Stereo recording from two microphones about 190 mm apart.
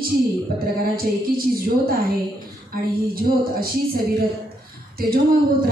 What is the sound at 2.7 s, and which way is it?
A woman's voice, 50° right (ahead or behind).